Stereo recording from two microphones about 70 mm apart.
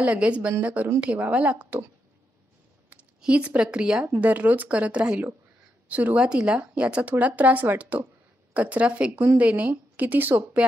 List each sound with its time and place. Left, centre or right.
0.0 s speech: centre
2.9 s speech: centre
4.2 s a woman's voice: right